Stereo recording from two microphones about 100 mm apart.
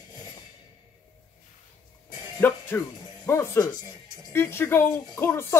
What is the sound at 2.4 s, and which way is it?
Speech, 20° left (ahead or behind).